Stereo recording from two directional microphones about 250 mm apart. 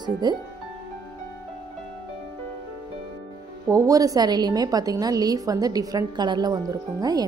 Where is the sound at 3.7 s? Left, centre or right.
Centre.